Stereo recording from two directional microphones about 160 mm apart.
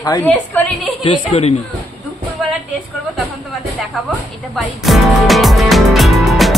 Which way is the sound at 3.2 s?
Centre (ahead or behind).